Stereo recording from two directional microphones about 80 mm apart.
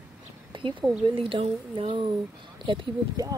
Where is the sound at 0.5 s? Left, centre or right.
Right.